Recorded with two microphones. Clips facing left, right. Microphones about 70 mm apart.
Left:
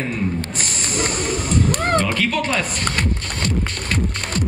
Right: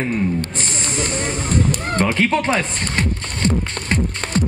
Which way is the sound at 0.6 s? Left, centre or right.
Right.